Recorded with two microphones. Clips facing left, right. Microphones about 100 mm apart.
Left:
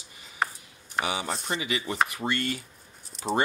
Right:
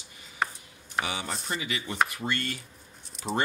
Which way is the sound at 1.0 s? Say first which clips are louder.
Left 3 dB; 15° left (ahead or behind).